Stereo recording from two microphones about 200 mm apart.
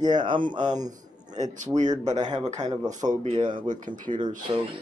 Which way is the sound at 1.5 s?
35° right (ahead or behind).